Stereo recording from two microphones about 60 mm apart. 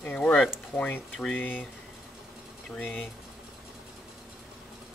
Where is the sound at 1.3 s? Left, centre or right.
Left.